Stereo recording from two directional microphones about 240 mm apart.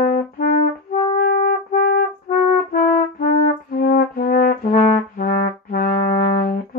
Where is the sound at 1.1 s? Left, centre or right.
Left.